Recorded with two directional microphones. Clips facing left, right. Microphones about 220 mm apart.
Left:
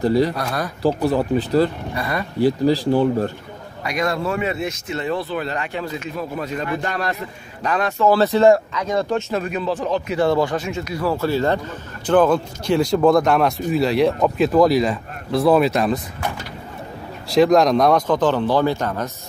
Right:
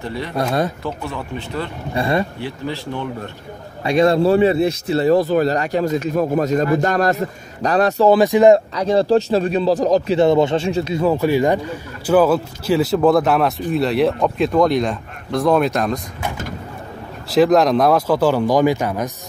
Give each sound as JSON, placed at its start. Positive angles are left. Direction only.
{"t": 0.0, "sound": "speech", "side_deg": 35}
{"t": 0.4, "sound": "speech", "side_deg": -25}
{"t": 0.8, "sound": "speech", "side_deg": 35}
{"t": 2.0, "sound": "speech", "side_deg": -25}
{"t": 2.3, "sound": "speech", "side_deg": 35}
{"t": 3.8, "sound": "speech", "side_deg": -30}
{"t": 8.1, "sound": "speech", "side_deg": -15}
{"t": 8.7, "sound": "speech", "side_deg": -35}
{"t": 10.1, "sound": "a man's voice", "side_deg": -20}
{"t": 17.3, "sound": "speech", "side_deg": 0}